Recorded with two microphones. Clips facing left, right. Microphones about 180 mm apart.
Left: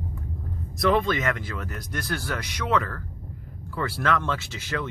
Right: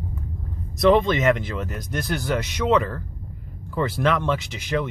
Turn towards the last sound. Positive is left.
turn(degrees=-15)  # may be behind; listen again after turning